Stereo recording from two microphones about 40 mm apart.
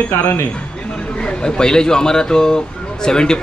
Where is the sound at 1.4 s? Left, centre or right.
Centre.